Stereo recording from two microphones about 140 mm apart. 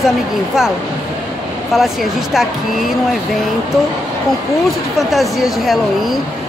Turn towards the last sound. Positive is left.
turn(degrees=0)  # may be behind; listen again after turning